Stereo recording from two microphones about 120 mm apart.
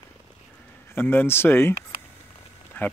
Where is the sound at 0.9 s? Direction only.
15° left (ahead or behind).